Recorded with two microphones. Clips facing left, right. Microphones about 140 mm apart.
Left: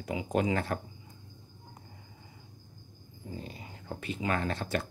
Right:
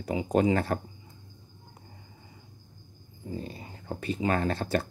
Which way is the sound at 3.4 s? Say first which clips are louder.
Right 4 dB; 35° right (ahead or behind).